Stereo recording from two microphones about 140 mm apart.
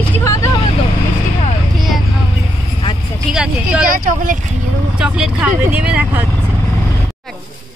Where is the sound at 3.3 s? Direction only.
5° right (ahead or behind).